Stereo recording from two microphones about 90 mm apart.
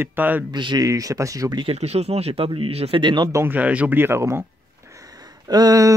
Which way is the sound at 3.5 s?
15° right (ahead or behind).